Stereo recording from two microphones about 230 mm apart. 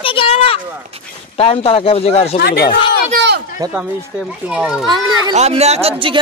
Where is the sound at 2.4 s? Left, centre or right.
Left.